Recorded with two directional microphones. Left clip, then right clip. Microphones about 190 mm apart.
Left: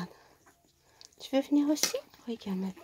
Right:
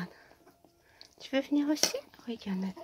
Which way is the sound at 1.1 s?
5° left (ahead or behind).